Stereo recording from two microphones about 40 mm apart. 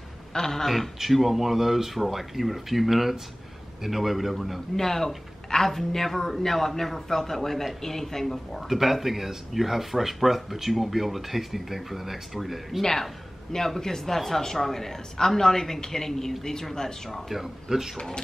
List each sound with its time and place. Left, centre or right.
0.3 s a woman's voice: centre
0.9 s speech: centre
4.7 s a woman's voice: centre
8.6 s speech: centre
12.8 s a woman's voice: centre
17.3 s speech: centre
17.9 s speech: centre